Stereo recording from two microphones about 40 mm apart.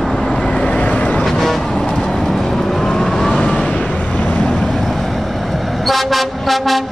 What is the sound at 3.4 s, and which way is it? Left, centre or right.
Vehicle, left.